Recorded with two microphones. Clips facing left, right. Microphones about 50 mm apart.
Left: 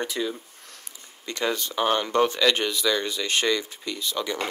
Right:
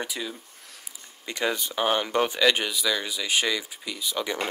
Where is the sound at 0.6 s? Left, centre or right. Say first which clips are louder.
Left 1 dB; centre.